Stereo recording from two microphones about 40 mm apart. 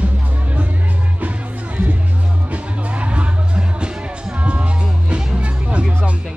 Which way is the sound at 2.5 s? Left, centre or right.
Right.